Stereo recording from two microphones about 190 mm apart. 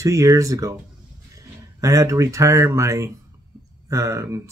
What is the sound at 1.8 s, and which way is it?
Speech, 15° right (ahead or behind).